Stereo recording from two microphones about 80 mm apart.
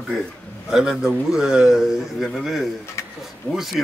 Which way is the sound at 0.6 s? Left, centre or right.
Centre.